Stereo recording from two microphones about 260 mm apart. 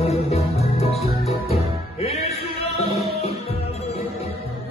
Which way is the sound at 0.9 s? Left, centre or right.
Centre.